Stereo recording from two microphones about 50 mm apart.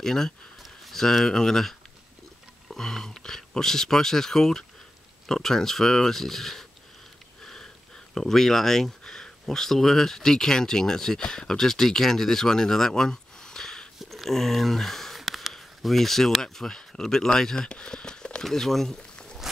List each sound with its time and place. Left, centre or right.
0.0 s speech: centre
8.1 s speech: centre
13.9 s a sound: centre
17.4 s speech: centre
18.4 s speech: centre
19.5 s a sound: centre